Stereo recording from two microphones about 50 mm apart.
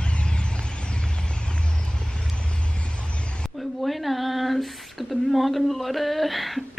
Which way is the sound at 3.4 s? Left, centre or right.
Centre.